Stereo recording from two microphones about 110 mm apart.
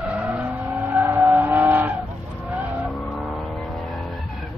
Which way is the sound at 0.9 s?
20° right (ahead or behind).